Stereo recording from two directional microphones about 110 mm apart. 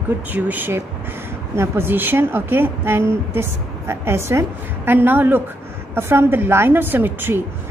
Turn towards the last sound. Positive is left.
turn(degrees=-20)  # may be behind; listen again after turning